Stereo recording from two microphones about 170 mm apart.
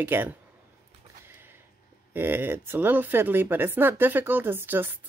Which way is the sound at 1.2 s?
10° right (ahead or behind).